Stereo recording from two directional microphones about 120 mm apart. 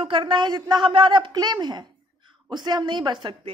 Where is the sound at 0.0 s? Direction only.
45° right (ahead or behind).